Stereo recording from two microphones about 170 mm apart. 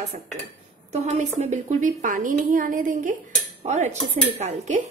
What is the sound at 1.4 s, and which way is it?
A woman's voice, 45° right (ahead or behind).